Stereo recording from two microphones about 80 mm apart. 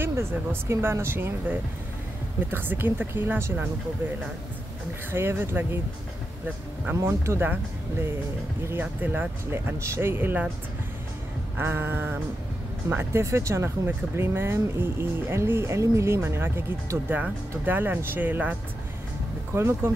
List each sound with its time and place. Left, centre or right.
0.0 s speech: right
5.1 s speech: right
7.0 s speech: right
8.6 s speech: right
11.5 s speech: right